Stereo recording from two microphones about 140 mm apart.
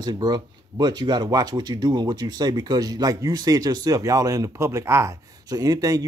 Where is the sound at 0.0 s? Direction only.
30° right (ahead or behind).